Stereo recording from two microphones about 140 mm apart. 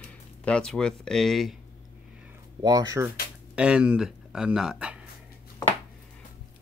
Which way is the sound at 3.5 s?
5° right (ahead or behind).